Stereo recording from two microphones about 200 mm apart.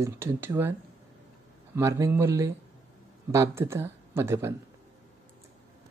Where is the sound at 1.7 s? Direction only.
15° right (ahead or behind).